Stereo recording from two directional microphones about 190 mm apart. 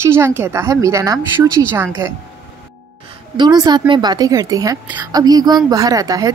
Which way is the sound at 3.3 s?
20° right (ahead or behind).